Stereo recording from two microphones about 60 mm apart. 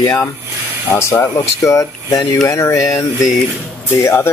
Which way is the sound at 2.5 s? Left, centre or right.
Left.